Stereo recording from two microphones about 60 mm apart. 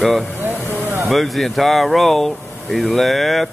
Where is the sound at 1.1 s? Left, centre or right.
Centre.